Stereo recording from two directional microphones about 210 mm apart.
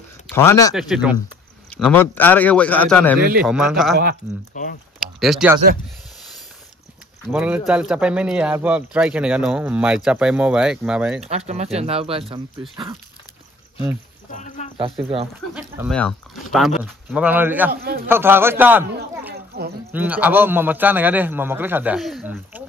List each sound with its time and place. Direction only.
0.3 s speech: 10° left (ahead or behind)
0.7 s speech: centre (ahead or behind)
3.2 s speech: 45° right (ahead or behind)
3.4 s speech: centre (ahead or behind)
4.6 s speech: 40° left (ahead or behind)
5.2 s speech: centre (ahead or behind)
7.2 s speech: 5° right (ahead or behind)
11.2 s speech: 30° right (ahead or behind)
14.3 s speech: 35° left (ahead or behind)
15.9 s speech: 5° left (ahead or behind)
17.7 s speech: 45° right (ahead or behind)
18.0 s a man's voice: 10° right (ahead or behind)
19.3 s a sound: 50° right (ahead or behind)
19.9 s a man's voice: 10° right (ahead or behind)